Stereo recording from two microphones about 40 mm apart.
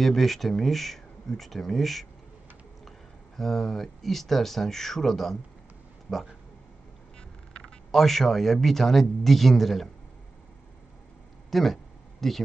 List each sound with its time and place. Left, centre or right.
0.0 s speech: centre
3.3 s speech: centre
6.1 s speech: left
7.9 s speech: centre
11.5 s a sound: centre